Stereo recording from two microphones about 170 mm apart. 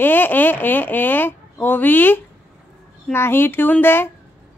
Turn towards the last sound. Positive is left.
turn(degrees=15)  # may be behind; listen again after turning